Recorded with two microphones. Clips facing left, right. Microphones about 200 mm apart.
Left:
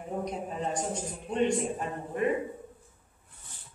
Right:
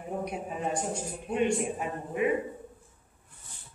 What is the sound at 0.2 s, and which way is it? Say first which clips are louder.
A man's voice: left 1 dB; 10° right (ahead or behind).